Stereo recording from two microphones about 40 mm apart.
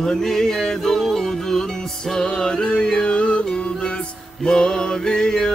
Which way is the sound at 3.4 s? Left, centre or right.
Left.